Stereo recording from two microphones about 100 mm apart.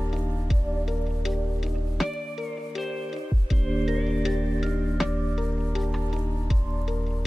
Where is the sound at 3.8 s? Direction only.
Centre (ahead or behind).